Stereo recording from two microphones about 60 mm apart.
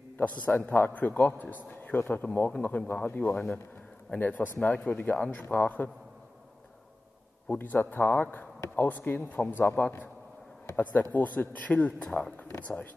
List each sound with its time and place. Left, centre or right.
0.2 s a man's voice: left
7.4 s a man's voice: left